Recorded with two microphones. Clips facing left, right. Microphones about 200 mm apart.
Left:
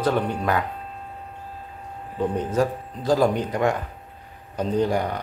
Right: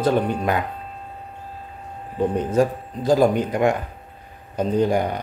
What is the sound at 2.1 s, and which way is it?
Speech, 15° right (ahead or behind).